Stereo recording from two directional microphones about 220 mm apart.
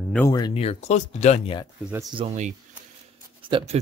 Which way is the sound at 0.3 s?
25° left (ahead or behind).